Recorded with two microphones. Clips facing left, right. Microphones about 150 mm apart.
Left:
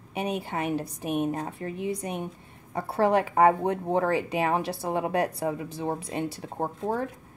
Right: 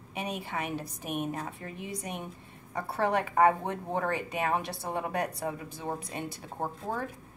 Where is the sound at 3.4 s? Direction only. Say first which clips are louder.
Left 4 dB; 35° left (ahead or behind).